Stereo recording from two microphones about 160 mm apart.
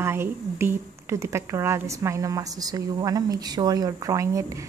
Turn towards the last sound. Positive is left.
turn(degrees=-20)  # may be behind; listen again after turning